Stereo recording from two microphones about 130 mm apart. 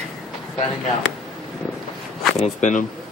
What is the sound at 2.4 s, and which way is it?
Speech, 70° left (ahead or behind).